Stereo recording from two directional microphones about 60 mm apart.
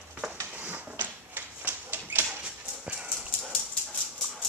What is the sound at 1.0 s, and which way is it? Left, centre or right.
Typewriter, right.